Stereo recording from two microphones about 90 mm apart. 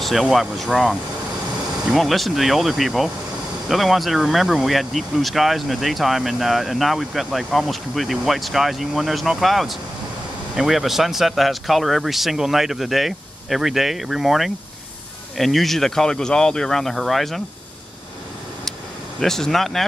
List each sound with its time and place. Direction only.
0.0 s speech: centre (ahead or behind)
18.7 s vehicle: 5° left (ahead or behind)